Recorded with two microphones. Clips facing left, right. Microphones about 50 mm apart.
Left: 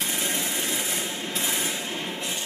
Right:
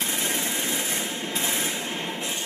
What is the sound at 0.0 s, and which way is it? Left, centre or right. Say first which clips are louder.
Engine: right 1 dB; centre.